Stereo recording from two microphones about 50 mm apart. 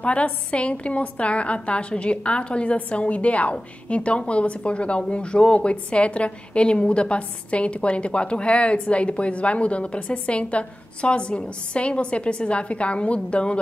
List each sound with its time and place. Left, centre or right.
0.0 s speech: left